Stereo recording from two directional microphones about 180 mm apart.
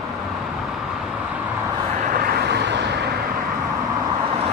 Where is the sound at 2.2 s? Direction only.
60° right (ahead or behind).